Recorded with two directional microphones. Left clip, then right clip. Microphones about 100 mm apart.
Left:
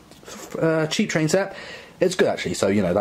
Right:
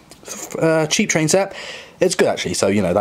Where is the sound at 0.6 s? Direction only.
25° right (ahead or behind).